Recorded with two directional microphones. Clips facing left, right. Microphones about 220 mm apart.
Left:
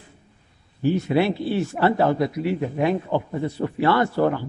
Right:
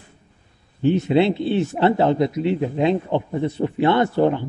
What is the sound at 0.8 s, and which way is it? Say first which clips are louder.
A man's voice: right 3 dB; 20° right (ahead or behind).